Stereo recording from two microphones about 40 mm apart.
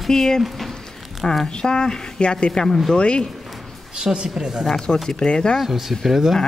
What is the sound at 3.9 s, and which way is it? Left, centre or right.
Speech, centre.